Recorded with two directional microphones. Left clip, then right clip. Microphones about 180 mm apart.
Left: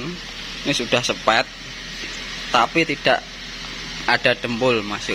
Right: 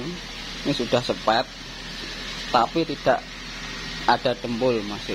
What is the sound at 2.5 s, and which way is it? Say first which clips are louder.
Speech: left 4 dB; centre (ahead or behind).